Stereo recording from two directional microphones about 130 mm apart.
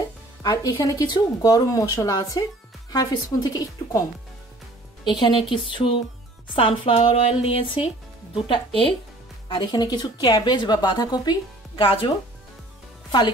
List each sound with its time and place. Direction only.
0.4 s speech: 30° left (ahead or behind)
5.0 s a woman's voice: 35° left (ahead or behind)